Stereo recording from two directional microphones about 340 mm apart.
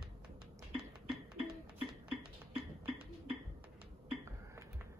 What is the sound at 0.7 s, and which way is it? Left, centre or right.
Music, centre.